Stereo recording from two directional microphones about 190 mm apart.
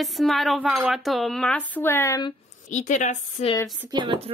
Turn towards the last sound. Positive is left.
turn(degrees=-25)  # may be behind; listen again after turning